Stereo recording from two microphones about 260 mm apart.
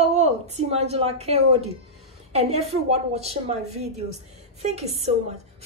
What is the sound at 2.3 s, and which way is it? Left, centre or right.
A woman's voice, right.